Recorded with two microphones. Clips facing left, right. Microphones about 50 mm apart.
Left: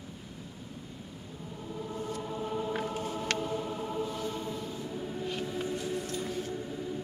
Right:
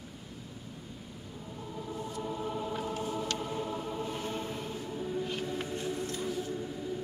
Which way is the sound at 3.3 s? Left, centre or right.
Left.